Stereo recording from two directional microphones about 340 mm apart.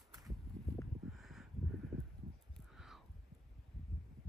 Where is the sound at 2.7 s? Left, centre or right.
Centre.